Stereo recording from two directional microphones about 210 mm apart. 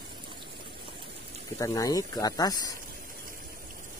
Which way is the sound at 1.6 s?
15° left (ahead or behind).